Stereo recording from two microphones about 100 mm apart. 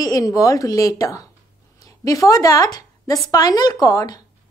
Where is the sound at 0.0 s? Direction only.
35° left (ahead or behind).